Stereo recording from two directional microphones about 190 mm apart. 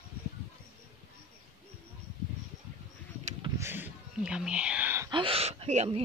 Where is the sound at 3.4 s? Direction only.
15° right (ahead or behind).